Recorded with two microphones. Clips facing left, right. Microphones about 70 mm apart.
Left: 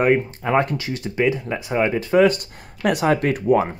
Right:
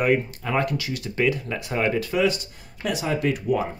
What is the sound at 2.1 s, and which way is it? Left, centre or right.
Speech, left.